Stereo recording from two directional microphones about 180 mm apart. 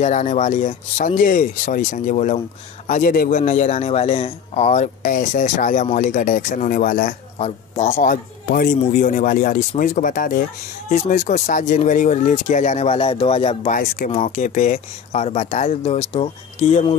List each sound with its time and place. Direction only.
0.0 s a man's voice: 40° left (ahead or behind)
7.3 s a man's voice: 35° left (ahead or behind)
13.7 s a man's voice: 50° left (ahead or behind)